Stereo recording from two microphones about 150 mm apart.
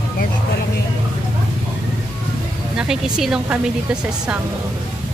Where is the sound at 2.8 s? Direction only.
5° right (ahead or behind).